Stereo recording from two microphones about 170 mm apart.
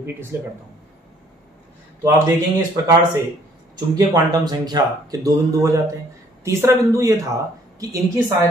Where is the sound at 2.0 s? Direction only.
20° right (ahead or behind).